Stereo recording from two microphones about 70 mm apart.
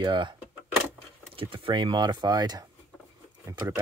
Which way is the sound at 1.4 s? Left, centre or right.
Right.